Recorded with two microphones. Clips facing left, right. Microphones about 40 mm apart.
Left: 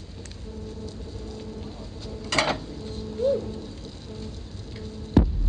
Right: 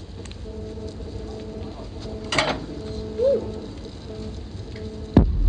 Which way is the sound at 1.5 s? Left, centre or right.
Centre.